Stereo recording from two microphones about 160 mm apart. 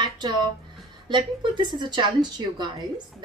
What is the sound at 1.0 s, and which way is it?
Speech, 30° right (ahead or behind).